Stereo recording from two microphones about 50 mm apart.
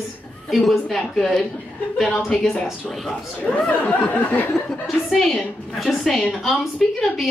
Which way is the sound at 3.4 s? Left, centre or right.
Left.